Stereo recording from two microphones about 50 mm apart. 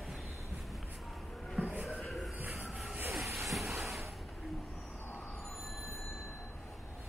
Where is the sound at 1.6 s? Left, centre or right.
Right.